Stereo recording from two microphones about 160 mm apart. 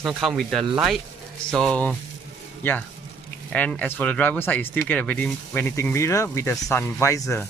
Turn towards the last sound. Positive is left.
turn(degrees=20)  # may be behind; listen again after turning